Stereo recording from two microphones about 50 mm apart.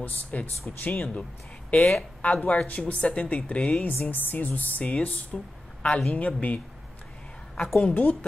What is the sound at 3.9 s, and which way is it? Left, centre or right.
A woman's voice, left.